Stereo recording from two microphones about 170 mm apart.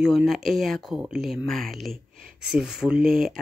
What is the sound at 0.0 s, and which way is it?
Speech, centre (ahead or behind).